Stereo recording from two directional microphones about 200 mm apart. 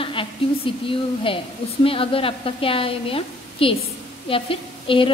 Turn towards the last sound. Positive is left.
turn(degrees=25)  # may be behind; listen again after turning